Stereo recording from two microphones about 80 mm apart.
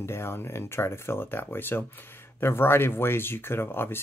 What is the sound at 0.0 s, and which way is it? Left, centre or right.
Speech, left.